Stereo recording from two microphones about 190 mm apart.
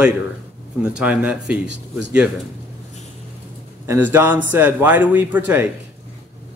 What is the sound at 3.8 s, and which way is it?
A man's voice, 10° right (ahead or behind).